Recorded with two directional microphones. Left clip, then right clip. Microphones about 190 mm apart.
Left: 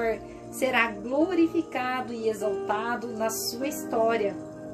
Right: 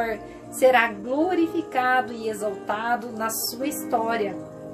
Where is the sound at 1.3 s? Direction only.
25° right (ahead or behind).